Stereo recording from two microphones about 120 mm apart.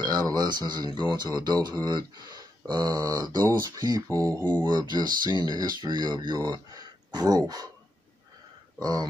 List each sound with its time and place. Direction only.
0.0 s speech: 35° right (ahead or behind)